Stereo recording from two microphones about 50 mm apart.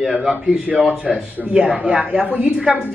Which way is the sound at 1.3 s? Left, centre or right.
Right.